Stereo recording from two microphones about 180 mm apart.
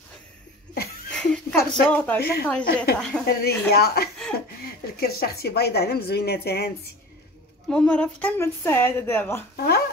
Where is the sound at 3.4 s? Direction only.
60° left (ahead or behind).